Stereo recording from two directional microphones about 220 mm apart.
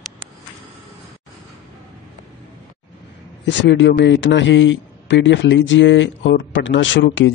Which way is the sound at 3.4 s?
55° left (ahead or behind).